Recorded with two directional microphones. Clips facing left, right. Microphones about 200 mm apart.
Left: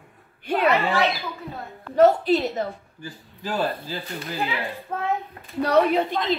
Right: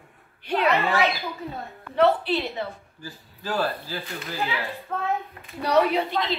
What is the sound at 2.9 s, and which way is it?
Speech, 20° left (ahead or behind).